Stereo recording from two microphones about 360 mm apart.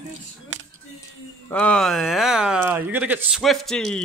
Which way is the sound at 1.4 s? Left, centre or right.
Centre.